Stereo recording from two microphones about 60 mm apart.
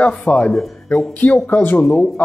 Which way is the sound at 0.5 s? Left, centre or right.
Centre.